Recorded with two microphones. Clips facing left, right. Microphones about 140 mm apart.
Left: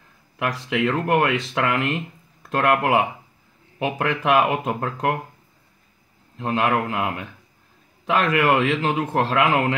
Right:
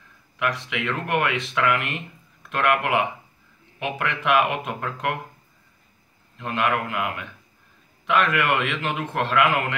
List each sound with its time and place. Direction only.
0.4 s a man's voice: 35° left (ahead or behind)
6.3 s a man's voice: 35° left (ahead or behind)